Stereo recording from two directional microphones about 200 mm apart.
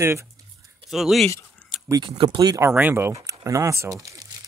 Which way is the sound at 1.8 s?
20° right (ahead or behind).